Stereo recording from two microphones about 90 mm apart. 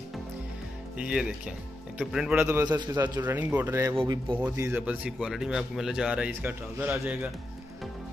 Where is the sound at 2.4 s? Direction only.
25° right (ahead or behind).